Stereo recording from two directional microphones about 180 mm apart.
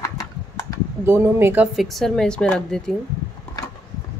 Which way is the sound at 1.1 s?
15° right (ahead or behind).